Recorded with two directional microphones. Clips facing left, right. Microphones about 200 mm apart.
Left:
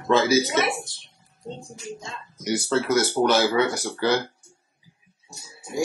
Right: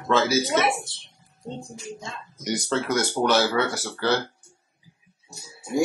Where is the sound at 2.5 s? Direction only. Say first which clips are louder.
Left 2 dB; 5° left (ahead or behind).